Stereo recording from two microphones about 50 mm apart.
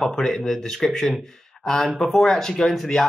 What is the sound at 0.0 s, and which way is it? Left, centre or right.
Speech, centre.